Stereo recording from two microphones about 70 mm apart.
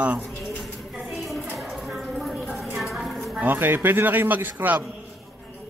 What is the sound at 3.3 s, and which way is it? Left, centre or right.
A man's voice, right.